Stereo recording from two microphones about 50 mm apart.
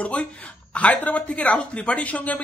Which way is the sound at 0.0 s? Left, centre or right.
Left.